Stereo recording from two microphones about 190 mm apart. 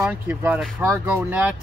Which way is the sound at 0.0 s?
5° right (ahead or behind).